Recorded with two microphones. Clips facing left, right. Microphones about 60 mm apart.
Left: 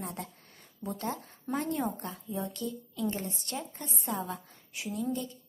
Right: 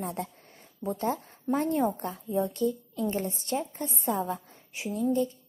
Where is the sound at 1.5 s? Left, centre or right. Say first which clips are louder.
Right 5 dB; right.